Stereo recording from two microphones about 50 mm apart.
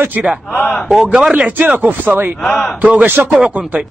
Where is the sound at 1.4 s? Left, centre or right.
Right.